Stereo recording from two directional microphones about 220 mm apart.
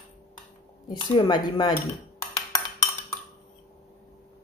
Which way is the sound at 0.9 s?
20° left (ahead or behind).